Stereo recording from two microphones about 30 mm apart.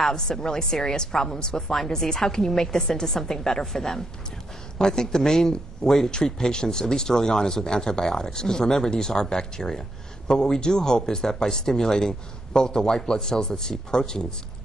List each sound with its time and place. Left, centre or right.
0.0 s speech: centre